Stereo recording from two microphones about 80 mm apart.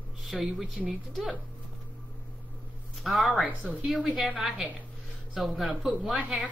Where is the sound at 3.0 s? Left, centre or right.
Centre.